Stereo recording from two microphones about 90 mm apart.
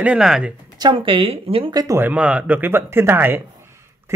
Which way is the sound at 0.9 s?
80° right.